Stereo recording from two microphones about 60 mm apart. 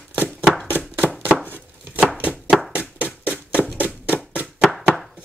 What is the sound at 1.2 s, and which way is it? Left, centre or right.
Chopping, right.